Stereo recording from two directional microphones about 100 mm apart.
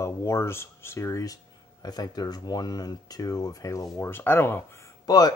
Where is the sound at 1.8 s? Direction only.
40° left (ahead or behind); by 4.6 s 25° left (ahead or behind).